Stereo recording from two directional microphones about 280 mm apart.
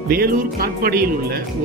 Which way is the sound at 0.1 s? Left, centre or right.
Right.